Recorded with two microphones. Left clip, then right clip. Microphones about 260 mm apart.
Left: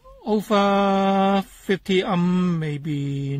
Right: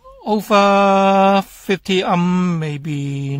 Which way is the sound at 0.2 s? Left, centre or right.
Right.